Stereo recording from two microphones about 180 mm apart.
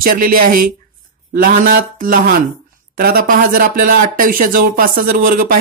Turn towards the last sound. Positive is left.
turn(degrees=-50)  # may be behind; listen again after turning